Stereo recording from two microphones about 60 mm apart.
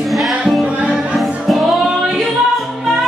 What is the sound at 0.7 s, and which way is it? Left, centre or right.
Music, centre.